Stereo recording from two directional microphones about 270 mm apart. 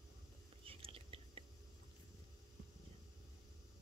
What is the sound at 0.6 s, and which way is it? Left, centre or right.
Whispering, right.